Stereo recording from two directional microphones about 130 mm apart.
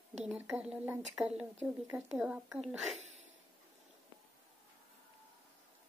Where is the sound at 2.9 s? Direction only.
60° right (ahead or behind).